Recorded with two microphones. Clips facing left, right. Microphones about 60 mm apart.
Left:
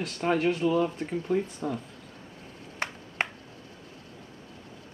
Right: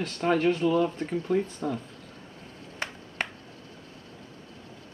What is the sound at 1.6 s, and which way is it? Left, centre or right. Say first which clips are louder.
Speech: right 1 dB; centre.